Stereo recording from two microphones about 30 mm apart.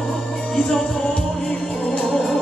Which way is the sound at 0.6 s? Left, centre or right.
Left.